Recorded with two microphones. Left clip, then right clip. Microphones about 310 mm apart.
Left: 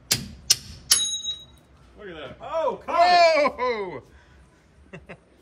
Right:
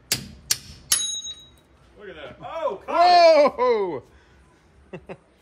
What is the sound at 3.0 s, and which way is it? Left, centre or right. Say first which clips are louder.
Baby cry: right 3 dB; centre.